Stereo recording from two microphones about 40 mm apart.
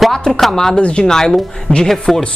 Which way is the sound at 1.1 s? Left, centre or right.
Centre.